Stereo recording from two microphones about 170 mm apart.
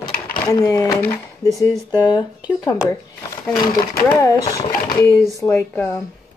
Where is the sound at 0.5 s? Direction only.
20° left (ahead or behind).